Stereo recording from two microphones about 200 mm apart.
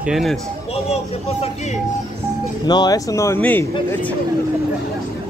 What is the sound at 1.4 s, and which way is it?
Speech, 35° left (ahead or behind).